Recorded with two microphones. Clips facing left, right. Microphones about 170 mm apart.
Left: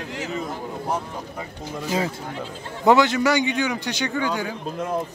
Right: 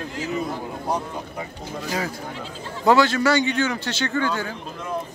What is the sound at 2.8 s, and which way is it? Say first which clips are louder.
Speech: even; 20° left (ahead or behind).